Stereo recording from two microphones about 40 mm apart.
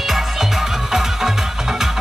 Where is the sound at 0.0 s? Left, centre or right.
Centre.